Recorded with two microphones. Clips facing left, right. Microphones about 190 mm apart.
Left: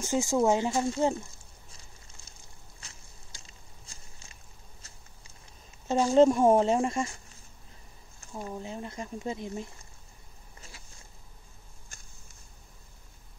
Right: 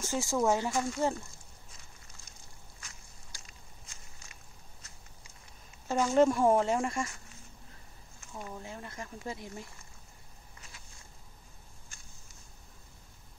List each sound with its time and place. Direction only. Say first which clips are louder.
0.0 s speech: left 4 dB; 15° left (ahead or behind)
2.8 s walk: left 2 dB; 25° left (ahead or behind)
5.9 s speech: left 4 dB; 25° left (ahead or behind)
8.2 s speech: left 5 dB; 30° left (ahead or behind)